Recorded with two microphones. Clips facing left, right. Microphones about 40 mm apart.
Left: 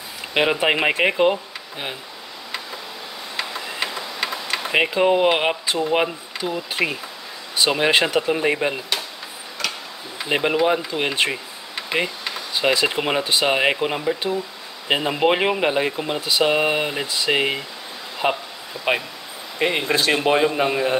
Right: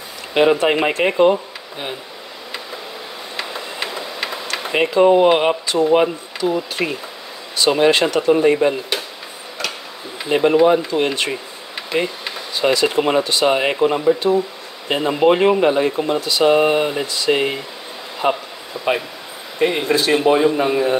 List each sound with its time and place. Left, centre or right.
0.3 s speech: centre
3.3 s tick-tock: centre
4.7 s speech: centre
10.2 s speech: centre
13.7 s speech: centre
19.9 s speech: left